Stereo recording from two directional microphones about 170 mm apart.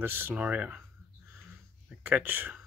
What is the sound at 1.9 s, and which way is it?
Speech, 10° right (ahead or behind).